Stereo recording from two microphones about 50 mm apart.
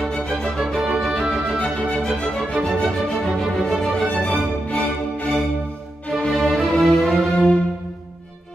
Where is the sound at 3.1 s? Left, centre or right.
Centre.